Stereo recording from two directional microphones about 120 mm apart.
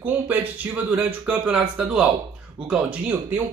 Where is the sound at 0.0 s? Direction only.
15° right (ahead or behind).